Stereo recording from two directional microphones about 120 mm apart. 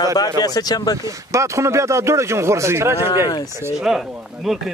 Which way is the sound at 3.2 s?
35° left (ahead or behind).